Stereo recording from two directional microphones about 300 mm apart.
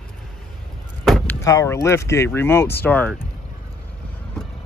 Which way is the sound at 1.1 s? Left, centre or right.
Centre.